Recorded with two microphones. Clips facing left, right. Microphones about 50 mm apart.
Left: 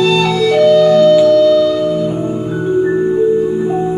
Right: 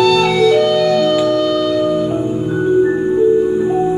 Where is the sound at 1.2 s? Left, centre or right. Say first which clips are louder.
Left 6 dB; right.